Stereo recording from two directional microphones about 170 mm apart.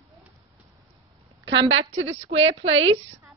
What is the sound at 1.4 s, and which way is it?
A woman's voice, 90° right.